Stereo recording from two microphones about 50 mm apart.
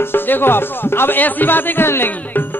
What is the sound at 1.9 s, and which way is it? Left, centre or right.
Speech, left.